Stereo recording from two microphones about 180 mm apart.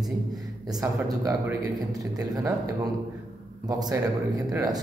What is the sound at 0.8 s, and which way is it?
Speech, 20° right (ahead or behind).